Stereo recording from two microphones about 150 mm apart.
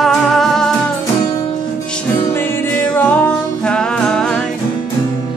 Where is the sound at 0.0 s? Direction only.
5° left (ahead or behind).